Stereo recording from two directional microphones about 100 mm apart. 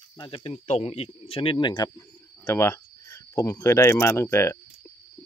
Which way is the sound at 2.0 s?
30° left (ahead or behind).